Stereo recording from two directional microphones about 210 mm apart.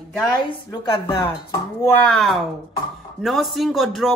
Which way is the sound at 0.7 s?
15° left (ahead or behind).